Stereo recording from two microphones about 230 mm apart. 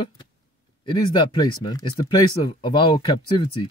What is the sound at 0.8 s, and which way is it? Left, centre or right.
Speech, centre.